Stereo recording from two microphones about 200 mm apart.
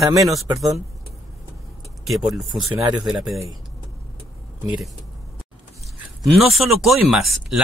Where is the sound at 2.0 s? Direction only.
Centre (ahead or behind).